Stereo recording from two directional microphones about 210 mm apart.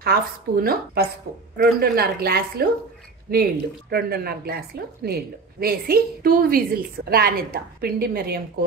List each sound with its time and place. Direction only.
0.0 s a woman's voice: 45° right (ahead or behind)